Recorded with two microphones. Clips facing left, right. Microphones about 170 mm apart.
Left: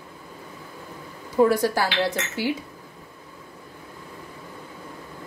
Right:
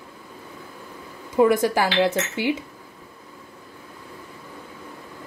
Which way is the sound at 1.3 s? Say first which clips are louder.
Right 1 dB; 20° right (ahead or behind).